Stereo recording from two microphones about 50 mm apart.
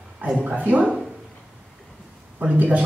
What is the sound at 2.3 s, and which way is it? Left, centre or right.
Speech, right.